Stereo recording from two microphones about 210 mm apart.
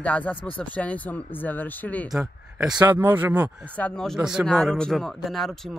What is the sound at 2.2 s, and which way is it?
Speech, 5° right (ahead or behind).